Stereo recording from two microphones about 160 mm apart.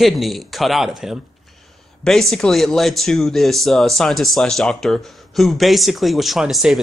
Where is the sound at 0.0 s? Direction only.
Centre (ahead or behind).